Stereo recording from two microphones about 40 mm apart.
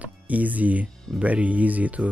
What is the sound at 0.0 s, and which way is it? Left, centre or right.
Speech, right.